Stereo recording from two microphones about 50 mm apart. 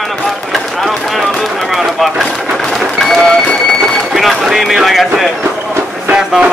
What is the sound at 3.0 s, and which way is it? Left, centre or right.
Speech, centre.